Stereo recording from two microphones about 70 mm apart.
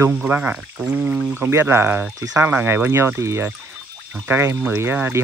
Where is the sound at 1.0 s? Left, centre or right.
Right.